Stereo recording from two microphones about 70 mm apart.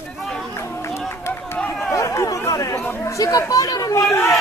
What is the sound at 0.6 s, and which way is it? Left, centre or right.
Run, left.